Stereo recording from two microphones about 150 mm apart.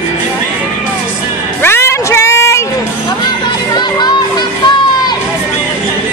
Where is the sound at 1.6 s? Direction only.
15° left (ahead or behind).